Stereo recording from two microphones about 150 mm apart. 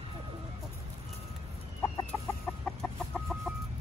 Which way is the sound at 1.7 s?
20° left (ahead or behind).